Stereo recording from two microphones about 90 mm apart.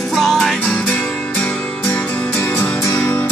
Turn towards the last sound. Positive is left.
turn(degrees=30)  # may be behind; listen again after turning